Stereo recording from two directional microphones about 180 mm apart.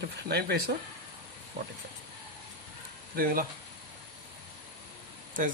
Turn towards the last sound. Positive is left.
turn(degrees=-45)  # may be behind; listen again after turning